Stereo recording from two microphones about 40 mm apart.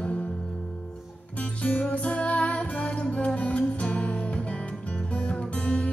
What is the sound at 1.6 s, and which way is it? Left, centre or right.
Music, left.